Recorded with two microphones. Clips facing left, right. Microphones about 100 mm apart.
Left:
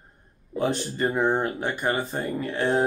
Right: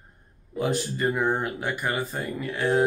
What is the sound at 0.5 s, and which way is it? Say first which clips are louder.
Speech: left 1 dB; 30° left (ahead or behind).